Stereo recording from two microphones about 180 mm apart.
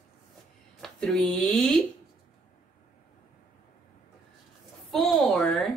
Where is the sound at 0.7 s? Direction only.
5° left (ahead or behind).